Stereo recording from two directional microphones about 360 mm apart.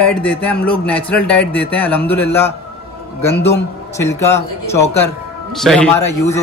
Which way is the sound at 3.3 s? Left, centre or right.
Left.